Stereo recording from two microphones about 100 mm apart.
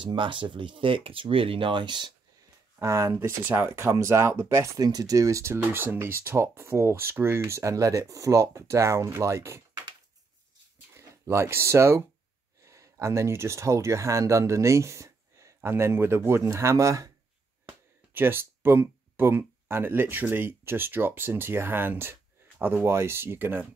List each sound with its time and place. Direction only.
0.0 s speech: 55° right (ahead or behind)
2.8 s speech: 30° right (ahead or behind)
4.7 s speech: 40° right (ahead or behind)
11.0 s speech: 30° right (ahead or behind)
12.6 s a sound: 30° right (ahead or behind)
12.9 s speech: 30° right (ahead or behind)
17.6 s speech: 20° right (ahead or behind)